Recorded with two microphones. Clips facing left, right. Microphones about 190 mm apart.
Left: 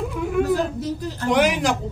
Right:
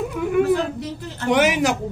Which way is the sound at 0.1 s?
5° right (ahead or behind).